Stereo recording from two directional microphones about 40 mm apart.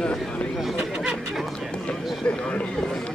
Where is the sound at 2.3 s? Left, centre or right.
Left.